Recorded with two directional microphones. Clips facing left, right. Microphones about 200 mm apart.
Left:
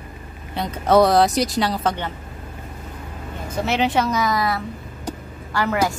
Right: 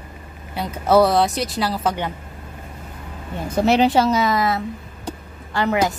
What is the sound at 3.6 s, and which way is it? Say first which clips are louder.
A woman's voice: right 5 dB; 35° right (ahead or behind).